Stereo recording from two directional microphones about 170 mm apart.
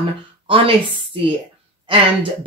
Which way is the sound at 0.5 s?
30° right (ahead or behind).